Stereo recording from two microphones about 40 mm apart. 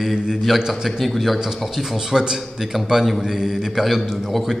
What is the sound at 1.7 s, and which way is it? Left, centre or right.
A man's voice, centre.